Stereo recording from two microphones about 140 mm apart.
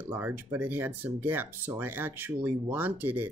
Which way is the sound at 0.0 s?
15° right (ahead or behind).